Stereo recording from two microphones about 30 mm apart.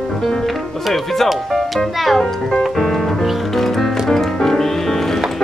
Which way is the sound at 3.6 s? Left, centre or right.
Centre.